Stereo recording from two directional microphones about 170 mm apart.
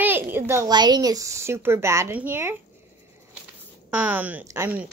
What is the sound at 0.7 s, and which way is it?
Speech, 25° right (ahead or behind).